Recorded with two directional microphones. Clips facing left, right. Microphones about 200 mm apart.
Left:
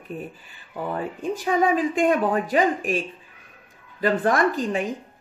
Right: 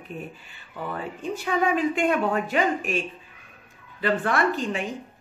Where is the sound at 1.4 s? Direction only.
40° left (ahead or behind).